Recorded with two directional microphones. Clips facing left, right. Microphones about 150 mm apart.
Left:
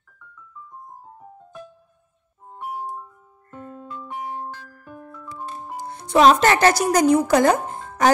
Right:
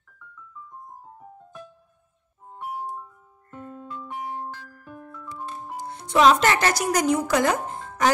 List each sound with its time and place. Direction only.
3.5 s music: 40° left (ahead or behind)
5.9 s speech: 45° left (ahead or behind)